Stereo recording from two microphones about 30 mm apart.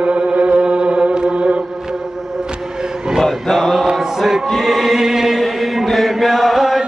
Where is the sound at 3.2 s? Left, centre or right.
Centre.